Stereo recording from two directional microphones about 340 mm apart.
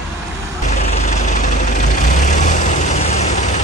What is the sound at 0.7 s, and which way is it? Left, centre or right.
Vehicle, centre.